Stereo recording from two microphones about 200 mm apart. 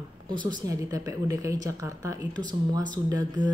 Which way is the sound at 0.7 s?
15° right (ahead or behind).